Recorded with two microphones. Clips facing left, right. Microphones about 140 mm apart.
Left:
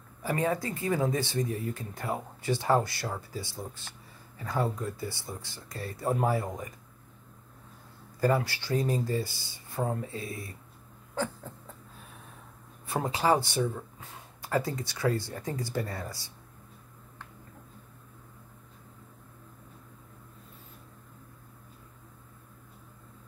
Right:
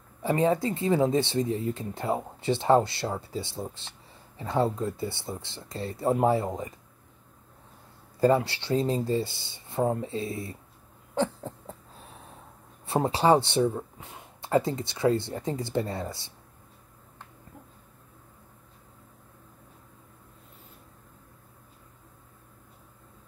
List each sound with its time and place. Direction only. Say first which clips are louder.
0.2 s speech: right 5 dB; 25° right (ahead or behind)
8.2 s speech: right 4 dB; 25° right (ahead or behind)
11.1 s a sound: right 5 dB; 30° right (ahead or behind)
12.8 s speech: right 5 dB; 30° right (ahead or behind)